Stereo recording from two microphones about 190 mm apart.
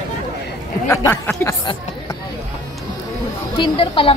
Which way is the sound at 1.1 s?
10° left (ahead or behind).